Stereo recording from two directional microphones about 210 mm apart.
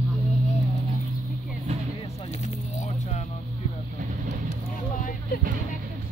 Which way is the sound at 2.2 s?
30° left (ahead or behind).